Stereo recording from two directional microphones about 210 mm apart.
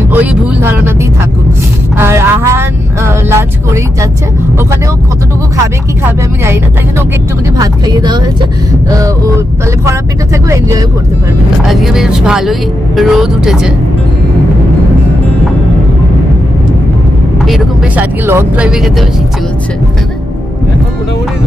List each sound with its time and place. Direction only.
0.1 s speech: 10° right (ahead or behind)
2.0 s speech: 10° right (ahead or behind)
6.4 s speech: 10° right (ahead or behind)
9.8 s speech: 15° right (ahead or behind)
11.6 s speech: centre (ahead or behind)
17.5 s speech: 10° right (ahead or behind)